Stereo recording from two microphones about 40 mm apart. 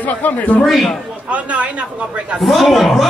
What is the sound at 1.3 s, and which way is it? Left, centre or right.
Speech, right.